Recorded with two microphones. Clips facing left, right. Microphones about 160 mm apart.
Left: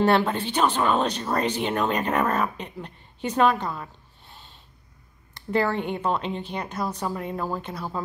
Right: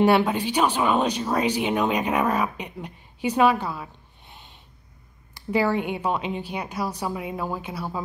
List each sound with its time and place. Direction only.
0.0 s speech: 10° right (ahead or behind)
4.3 s snort: 15° right (ahead or behind)
5.3 s speech: 10° right (ahead or behind)